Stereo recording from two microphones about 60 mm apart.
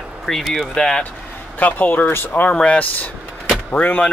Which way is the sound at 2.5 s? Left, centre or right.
Left.